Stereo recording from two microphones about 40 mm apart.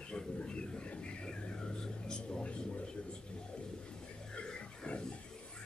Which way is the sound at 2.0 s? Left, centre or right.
Centre.